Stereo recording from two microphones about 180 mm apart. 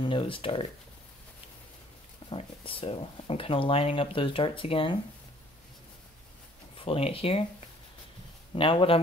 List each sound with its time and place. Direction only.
0.0 s speech: 30° left (ahead or behind)
2.2 s speech: 30° left (ahead or behind)
6.8 s speech: 30° left (ahead or behind)
8.5 s speech: 30° left (ahead or behind)